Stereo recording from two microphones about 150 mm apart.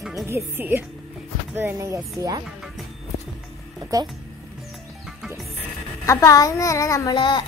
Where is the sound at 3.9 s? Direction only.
20° right (ahead or behind).